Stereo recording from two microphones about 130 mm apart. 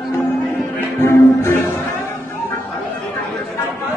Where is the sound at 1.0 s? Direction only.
20° left (ahead or behind).